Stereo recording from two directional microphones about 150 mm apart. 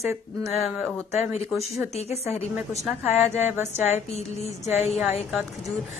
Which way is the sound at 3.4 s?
15° right (ahead or behind).